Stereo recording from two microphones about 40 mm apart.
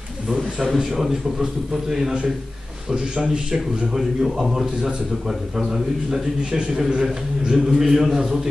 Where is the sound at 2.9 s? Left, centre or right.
Right.